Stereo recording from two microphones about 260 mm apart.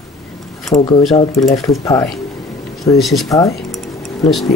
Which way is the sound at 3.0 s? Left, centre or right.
Centre.